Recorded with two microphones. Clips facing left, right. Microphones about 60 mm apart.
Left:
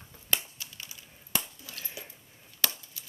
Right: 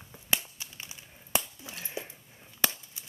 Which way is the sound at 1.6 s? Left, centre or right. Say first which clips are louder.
Right 4 dB; right.